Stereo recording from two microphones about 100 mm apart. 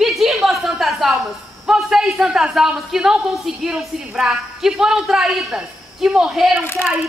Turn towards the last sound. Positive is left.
turn(degrees=25)  # may be behind; listen again after turning